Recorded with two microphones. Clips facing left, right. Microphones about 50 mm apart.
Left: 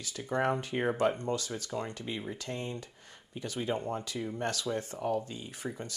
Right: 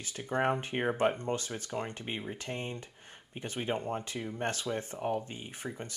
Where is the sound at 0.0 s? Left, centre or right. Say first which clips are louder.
Even; right.